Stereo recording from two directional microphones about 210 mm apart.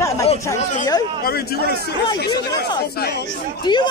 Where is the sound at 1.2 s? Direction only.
50° left (ahead or behind).